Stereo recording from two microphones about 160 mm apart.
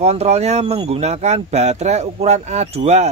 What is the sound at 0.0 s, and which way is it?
Speech, 45° right (ahead or behind).